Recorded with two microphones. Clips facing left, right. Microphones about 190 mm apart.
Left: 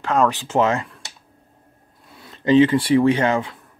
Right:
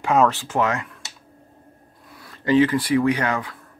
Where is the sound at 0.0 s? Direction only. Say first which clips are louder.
Right 1 dB; 5° right (ahead or behind).